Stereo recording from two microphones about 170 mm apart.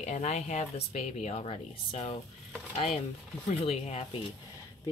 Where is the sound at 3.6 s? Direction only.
35° left (ahead or behind).